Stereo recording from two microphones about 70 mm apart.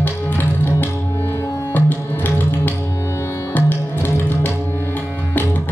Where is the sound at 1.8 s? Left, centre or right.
Left.